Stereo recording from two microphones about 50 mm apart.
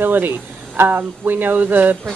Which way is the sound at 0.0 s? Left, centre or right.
Right.